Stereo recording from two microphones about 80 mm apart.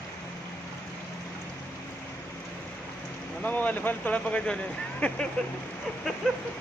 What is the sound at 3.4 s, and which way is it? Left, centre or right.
Speech, left.